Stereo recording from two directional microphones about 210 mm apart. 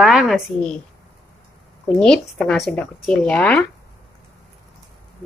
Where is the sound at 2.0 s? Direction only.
5° left (ahead or behind).